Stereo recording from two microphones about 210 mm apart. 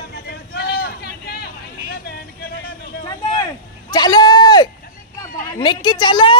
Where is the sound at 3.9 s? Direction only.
20° left (ahead or behind).